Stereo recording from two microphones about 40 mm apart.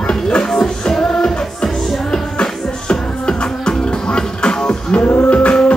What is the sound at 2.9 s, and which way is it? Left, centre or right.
Music, left.